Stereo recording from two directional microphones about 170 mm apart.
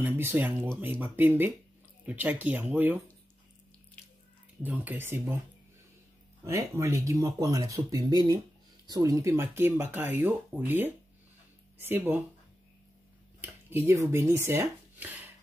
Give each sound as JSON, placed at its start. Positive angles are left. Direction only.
{"t": 0.0, "sound": "speech", "side_deg": -10}
{"t": 4.6, "sound": "speech", "side_deg": -10}
{"t": 6.4, "sound": "speech", "side_deg": -15}
{"t": 13.4, "sound": "speech", "side_deg": -10}